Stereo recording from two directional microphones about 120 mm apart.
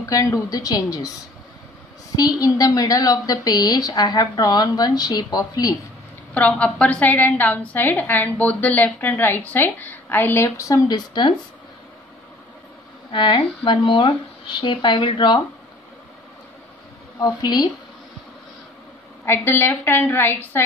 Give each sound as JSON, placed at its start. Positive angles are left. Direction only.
{"t": 0.0, "sound": "a woman's voice", "side_deg": 30}
{"t": 2.1, "sound": "a woman's voice", "side_deg": 30}
{"t": 6.3, "sound": "a woman's voice", "side_deg": 10}
{"t": 13.1, "sound": "a woman's voice", "side_deg": 40}
{"t": 17.2, "sound": "a woman's voice", "side_deg": 35}
{"t": 19.2, "sound": "a woman's voice", "side_deg": 20}